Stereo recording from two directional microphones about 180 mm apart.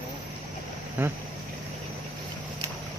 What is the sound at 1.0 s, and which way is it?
Speech, 10° right (ahead or behind).